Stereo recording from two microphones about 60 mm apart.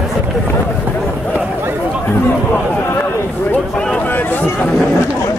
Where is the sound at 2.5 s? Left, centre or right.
Left.